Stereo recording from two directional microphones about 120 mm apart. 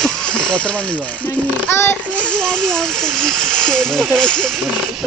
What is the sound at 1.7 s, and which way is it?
Speech, 20° left (ahead or behind).